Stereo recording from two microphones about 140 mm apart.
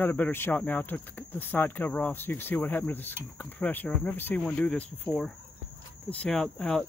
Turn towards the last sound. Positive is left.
turn(degrees=5)  # may be behind; listen again after turning